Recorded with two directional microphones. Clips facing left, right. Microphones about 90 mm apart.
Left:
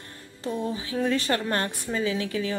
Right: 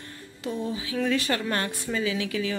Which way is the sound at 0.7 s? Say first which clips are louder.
Right 1 dB; 35° left (ahead or behind).